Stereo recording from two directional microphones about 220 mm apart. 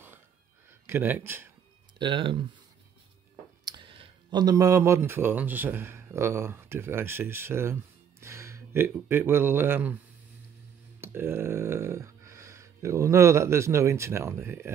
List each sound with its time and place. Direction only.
0.7 s speech: 10° right (ahead or behind)
2.0 s speech: 20° right (ahead or behind)
3.6 s speech: 20° right (ahead or behind)
11.0 s a sound: 10° right (ahead or behind)